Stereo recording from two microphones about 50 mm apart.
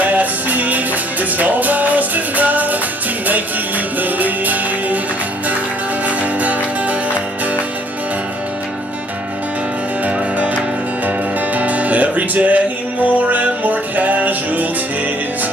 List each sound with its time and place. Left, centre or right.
0.0 s music: right
6.0 s music: right
10.0 s music: right